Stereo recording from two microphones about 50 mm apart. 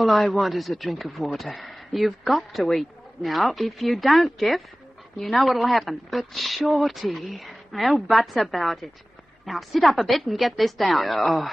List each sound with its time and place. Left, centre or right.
0.0 s speech: centre